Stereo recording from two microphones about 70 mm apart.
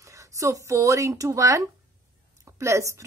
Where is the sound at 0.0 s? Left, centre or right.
Right.